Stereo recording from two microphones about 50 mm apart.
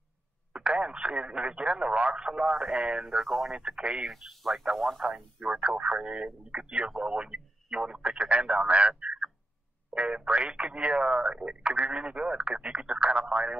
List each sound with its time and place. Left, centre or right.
0.5 s speech: right
2.3 s speech: centre
3.9 s speech: centre
5.9 s speech: centre